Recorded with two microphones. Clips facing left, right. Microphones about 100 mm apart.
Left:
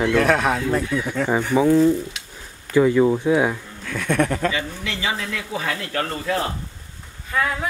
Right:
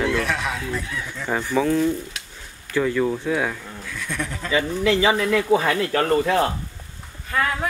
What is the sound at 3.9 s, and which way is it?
Speech, 60° left (ahead or behind).